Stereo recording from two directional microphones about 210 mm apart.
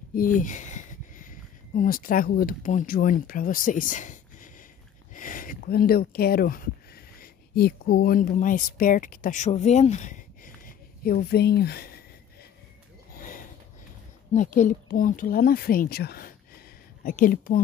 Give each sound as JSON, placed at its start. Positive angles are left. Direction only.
{"t": 0.1, "sound": "speech", "side_deg": 40}
{"t": 13.1, "sound": "a sound", "side_deg": 40}
{"t": 14.3, "sound": "speech", "side_deg": 35}